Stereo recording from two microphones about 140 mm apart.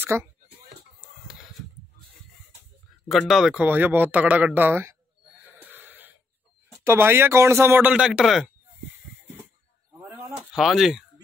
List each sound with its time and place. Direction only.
0.0 s speech: 20° right (ahead or behind)
3.1 s speech: centre (ahead or behind)
5.6 s wheeze: 15° right (ahead or behind)
6.8 s speech: 20° right (ahead or behind); by 8.5 s centre (ahead or behind)
10.5 s speech: centre (ahead or behind)